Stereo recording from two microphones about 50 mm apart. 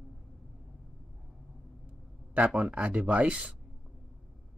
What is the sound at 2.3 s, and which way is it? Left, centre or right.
Speech, right.